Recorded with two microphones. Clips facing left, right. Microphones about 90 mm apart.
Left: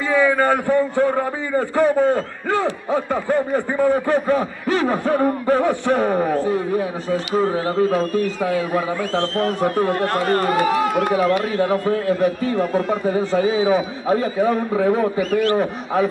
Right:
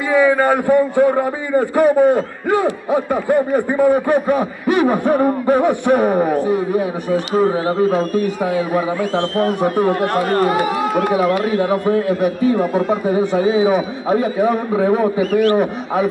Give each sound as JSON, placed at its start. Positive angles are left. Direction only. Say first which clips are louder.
{"t": 0.1, "sound": "a man's voice", "louder": "right 3 dB", "side_deg": -15}